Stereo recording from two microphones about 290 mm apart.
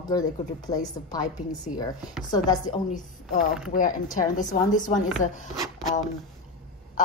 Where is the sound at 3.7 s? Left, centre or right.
Left.